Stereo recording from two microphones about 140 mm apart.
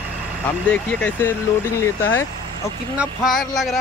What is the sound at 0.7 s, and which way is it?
Speech, 10° left (ahead or behind).